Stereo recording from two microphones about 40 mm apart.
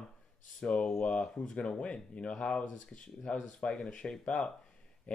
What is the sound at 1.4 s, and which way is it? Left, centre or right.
Speech, left.